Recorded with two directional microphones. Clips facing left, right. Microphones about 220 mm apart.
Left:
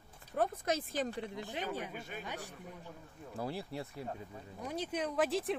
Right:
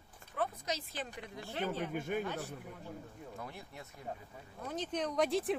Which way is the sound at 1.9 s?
50° right (ahead or behind).